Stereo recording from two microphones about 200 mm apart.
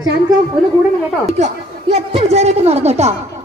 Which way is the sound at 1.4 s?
30° right (ahead or behind).